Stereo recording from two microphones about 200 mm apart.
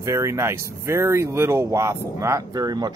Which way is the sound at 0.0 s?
15° right (ahead or behind).